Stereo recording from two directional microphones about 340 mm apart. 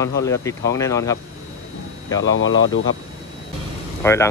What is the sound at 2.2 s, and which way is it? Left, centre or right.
Speech, left.